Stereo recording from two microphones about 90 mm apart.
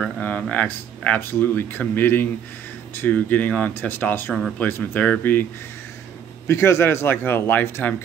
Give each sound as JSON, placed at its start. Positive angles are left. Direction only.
{"t": 0.2, "sound": "speech", "side_deg": 15}
{"t": 4.3, "sound": "speech", "side_deg": 0}
{"t": 4.6, "sound": "speech", "side_deg": 20}